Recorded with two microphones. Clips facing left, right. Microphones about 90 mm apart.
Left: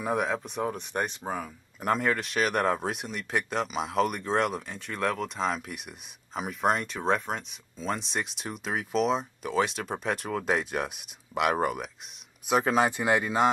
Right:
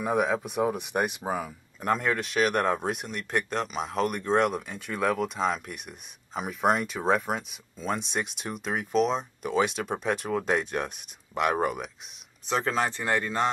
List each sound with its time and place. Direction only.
0.0 s speech: centre (ahead or behind)
12.4 s speech: 10° left (ahead or behind)